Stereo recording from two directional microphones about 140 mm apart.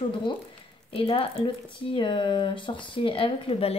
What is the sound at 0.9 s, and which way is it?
Speech, 40° left (ahead or behind).